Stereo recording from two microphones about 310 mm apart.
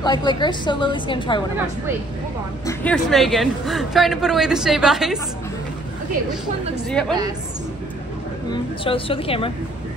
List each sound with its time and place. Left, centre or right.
0.0 s a woman's voice: centre
2.6 s a woman's voice: centre
6.9 s a woman's voice: centre
8.5 s a woman's voice: centre